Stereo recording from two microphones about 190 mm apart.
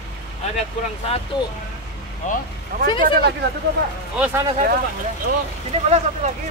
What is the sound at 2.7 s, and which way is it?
Speech, 45° right (ahead or behind).